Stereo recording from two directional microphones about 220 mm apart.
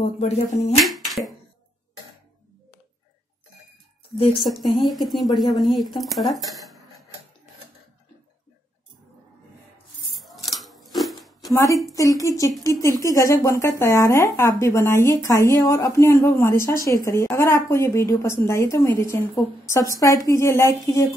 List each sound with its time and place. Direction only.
0.0 s speech: 30° left (ahead or behind)
0.8 s finger snapping: centre (ahead or behind)
4.4 s speech: centre (ahead or behind)
10.1 s scissors: centre (ahead or behind)
11.0 s a sound: centre (ahead or behind)
11.5 s a woman's voice: 15° left (ahead or behind)